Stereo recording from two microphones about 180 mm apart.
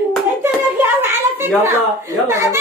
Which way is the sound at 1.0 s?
15° right (ahead or behind).